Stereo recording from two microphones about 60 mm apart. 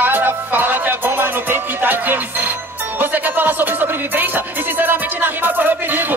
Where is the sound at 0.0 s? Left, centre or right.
Right.